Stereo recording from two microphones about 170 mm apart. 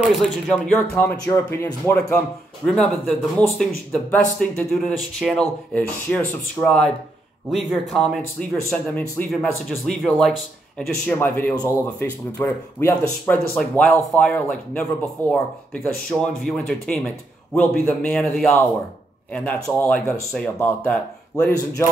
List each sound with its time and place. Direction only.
0.2 s speech: 5° left (ahead or behind)
1.1 s speech: 20° left (ahead or behind)
2.1 s speech: 5° left (ahead or behind)